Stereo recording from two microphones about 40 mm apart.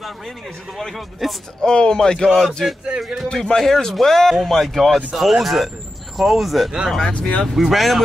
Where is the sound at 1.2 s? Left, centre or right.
Centre.